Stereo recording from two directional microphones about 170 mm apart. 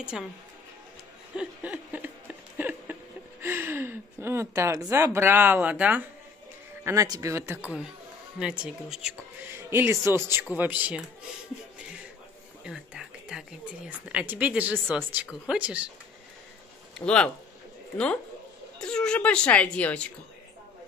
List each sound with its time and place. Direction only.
0.1 s speech: 5° right (ahead or behind)
1.3 s a sound: 5° right (ahead or behind)
2.5 s speech: 10° right (ahead or behind)
12.6 s speech: 5° right (ahead or behind)
16.9 s speech: 5° left (ahead or behind)